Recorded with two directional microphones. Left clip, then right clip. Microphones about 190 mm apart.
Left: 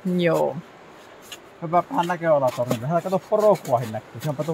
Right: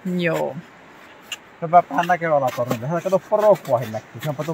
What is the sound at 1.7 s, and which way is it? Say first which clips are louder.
Speech: right 6 dB; 50° right (ahead or behind).